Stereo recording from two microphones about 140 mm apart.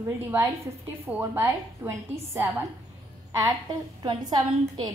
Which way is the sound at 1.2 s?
20° right (ahead or behind).